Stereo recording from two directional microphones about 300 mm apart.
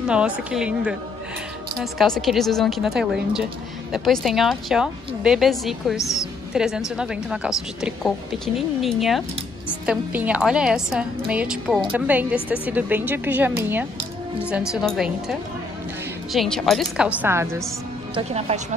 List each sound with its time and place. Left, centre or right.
0.1 s a woman's voice: centre
18.1 s speech: right